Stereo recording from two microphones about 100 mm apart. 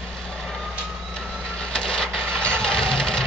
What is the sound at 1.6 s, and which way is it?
Vehicle, 10° left (ahead or behind).